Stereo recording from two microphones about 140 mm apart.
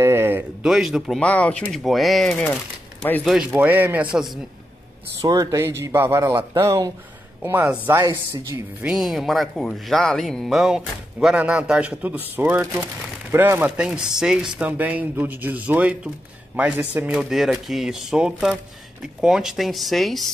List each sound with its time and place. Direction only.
0.0 s a sound: 15° right (ahead or behind)
0.7 s speech: centre (ahead or behind)
1.2 s speech: 10° left (ahead or behind)
3.5 s speech: 15° right (ahead or behind)
5.2 s speech: 25° right (ahead or behind)
8.8 s speech: centre (ahead or behind)